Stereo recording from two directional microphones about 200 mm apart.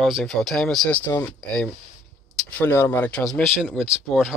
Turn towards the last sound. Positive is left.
turn(degrees=0)  # may be behind; listen again after turning